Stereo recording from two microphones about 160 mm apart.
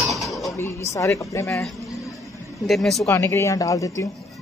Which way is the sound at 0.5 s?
15° left (ahead or behind).